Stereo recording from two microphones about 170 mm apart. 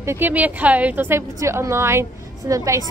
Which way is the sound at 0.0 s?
15° right (ahead or behind).